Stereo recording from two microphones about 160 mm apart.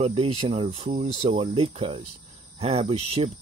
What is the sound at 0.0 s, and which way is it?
Speech, 40° right (ahead or behind).